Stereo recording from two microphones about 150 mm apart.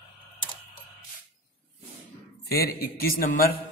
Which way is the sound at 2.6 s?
85° left.